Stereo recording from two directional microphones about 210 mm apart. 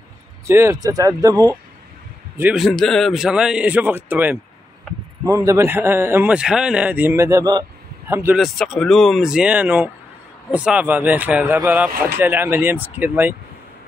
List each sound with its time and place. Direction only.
0.5 s speech: 15° right (ahead or behind)
2.3 s a man's voice: 5° right (ahead or behind)
8.4 s a man's voice: centre (ahead or behind)